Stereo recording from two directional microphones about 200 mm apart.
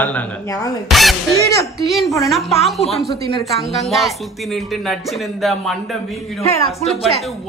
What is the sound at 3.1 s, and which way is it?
Speech, 50° right (ahead or behind).